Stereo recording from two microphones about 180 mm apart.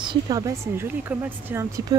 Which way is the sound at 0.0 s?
25° right (ahead or behind).